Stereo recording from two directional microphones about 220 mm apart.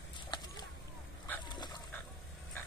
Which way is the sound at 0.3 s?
20° left (ahead or behind).